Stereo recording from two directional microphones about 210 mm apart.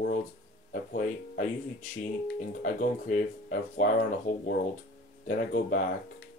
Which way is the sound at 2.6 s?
40° left (ahead or behind).